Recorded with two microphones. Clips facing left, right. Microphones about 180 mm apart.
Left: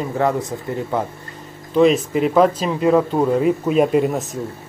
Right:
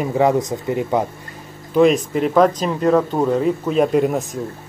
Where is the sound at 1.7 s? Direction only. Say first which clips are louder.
Even; centre (ahead or behind).